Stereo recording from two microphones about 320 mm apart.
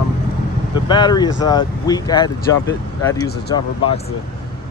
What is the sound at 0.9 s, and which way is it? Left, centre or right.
Speech, centre.